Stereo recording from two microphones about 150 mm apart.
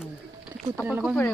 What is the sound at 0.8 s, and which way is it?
Speech, 10° right (ahead or behind).